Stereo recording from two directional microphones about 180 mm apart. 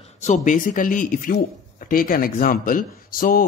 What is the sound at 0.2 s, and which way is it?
A man's voice, 45° left (ahead or behind).